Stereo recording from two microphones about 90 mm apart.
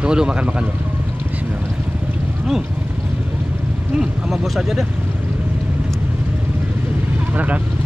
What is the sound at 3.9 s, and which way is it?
Speech, 5° right (ahead or behind).